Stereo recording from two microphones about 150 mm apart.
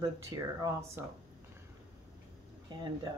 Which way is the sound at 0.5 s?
25° right (ahead or behind).